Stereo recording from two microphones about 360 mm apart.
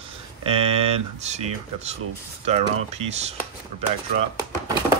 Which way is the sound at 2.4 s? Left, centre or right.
Centre.